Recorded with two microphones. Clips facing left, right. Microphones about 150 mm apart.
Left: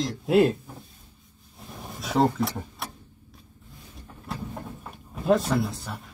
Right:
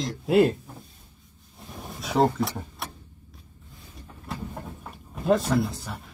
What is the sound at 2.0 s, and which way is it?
Vehicle, centre (ahead or behind).